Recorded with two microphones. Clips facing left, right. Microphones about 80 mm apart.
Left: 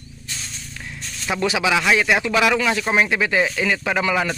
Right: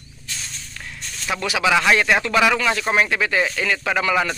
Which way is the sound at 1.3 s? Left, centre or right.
Left.